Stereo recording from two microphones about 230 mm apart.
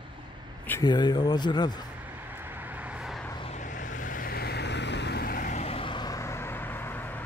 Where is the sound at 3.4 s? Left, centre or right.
Left; by 7.2 s centre.